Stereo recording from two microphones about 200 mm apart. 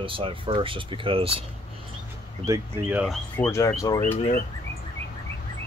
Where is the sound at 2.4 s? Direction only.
15° right (ahead or behind).